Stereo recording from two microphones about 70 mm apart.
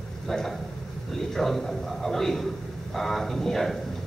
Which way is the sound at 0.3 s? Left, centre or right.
Centre.